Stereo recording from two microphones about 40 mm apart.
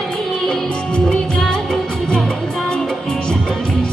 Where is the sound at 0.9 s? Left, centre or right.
Left.